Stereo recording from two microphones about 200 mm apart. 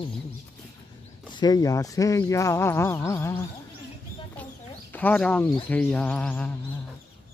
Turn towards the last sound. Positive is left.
turn(degrees=10)  # may be behind; listen again after turning